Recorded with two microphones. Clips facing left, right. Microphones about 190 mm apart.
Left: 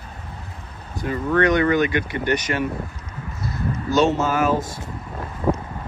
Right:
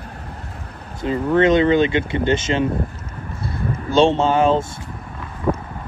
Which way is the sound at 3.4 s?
30° right (ahead or behind).